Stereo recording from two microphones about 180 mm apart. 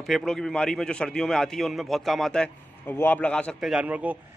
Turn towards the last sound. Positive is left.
turn(degrees=-5)  # may be behind; listen again after turning